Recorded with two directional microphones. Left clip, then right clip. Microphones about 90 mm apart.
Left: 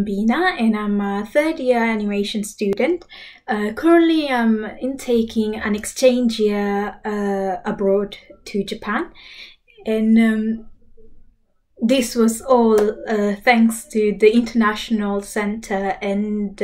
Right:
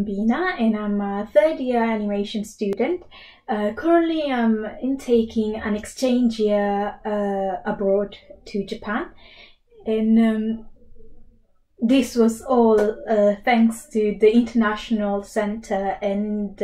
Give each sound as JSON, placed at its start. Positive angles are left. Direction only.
{"t": 0.3, "sound": "a woman's voice", "side_deg": 20}
{"t": 11.8, "sound": "a woman's voice", "side_deg": 20}